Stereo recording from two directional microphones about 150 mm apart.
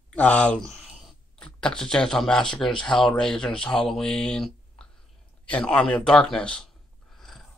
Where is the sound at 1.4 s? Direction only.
5° left (ahead or behind).